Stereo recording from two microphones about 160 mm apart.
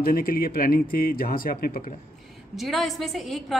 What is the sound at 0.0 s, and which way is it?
Speech, 65° left (ahead or behind).